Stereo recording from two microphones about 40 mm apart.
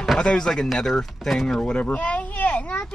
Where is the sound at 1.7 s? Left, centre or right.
Left.